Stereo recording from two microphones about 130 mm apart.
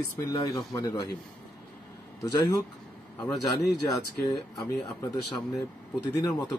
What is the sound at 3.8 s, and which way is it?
Speech, 30° left (ahead or behind).